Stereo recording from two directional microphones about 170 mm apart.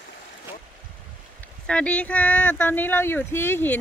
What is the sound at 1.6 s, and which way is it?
Speech, 5° left (ahead or behind).